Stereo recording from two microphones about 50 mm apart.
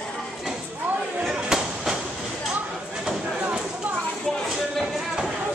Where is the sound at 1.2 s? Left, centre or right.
Centre.